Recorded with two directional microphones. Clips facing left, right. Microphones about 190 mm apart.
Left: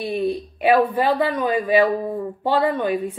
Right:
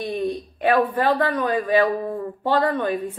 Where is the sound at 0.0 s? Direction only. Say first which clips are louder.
Left 2 dB; 5° left (ahead or behind).